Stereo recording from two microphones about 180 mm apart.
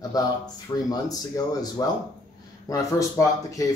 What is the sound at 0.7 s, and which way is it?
Speech, 20° left (ahead or behind).